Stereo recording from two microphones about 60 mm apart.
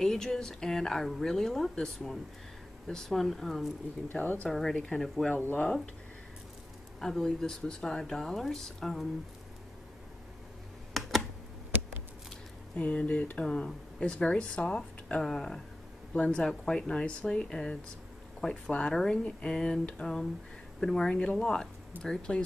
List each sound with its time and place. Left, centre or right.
0.0 s speech: centre
4.1 s speech: left
4.5 s speech: centre
5.3 s speech: left
7.0 s speech: centre
10.9 s computer keyboard: centre
12.7 s speech: left
16.1 s speech: centre